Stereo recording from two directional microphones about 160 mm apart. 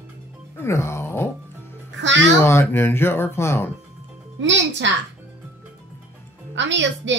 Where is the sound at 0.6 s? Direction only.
15° left (ahead or behind).